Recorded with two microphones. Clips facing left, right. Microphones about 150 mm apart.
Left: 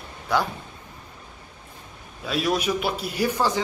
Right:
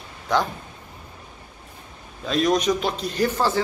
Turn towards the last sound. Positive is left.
turn(degrees=15)  # may be behind; listen again after turning